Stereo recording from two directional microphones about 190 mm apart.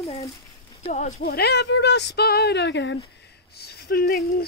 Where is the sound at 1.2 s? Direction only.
55° left (ahead or behind); by 3.0 s 70° left (ahead or behind).